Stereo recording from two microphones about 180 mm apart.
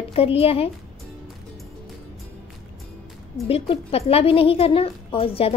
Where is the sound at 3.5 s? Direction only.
35° left (ahead or behind).